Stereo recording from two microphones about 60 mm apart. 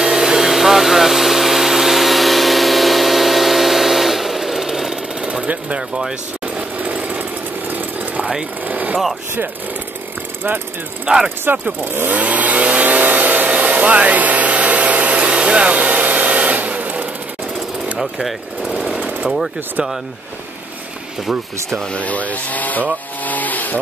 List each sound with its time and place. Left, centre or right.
0.0 s vacuum cleaner: centre
5.2 s jackhammer: centre
8.2 s sewing machine: centre
8.6 s a sound: right
11.1 s speech: centre
11.4 s speech: right
12.1 s vehicle: right
17.9 s speech: centre
18.9 s jackhammer: centre
19.3 s speech: centre
21.9 s speech: left
23.2 s a sound: left